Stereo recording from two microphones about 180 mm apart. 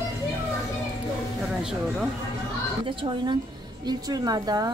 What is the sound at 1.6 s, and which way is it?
Speech, 5° right (ahead or behind).